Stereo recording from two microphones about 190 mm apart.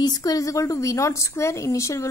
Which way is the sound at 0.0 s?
20° left (ahead or behind).